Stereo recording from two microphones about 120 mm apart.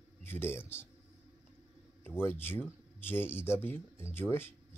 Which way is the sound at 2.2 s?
20° left (ahead or behind).